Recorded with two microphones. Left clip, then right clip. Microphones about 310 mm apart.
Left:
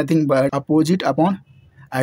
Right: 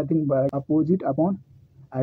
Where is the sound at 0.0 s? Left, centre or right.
Left.